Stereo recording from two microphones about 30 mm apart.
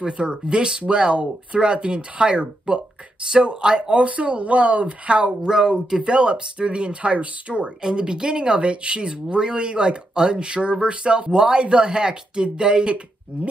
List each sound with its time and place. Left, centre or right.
0.0 s speech: right
3.6 s speech: right
3.9 s speech: right
5.5 s speech: centre; by 7.7 s right
7.8 s speech: right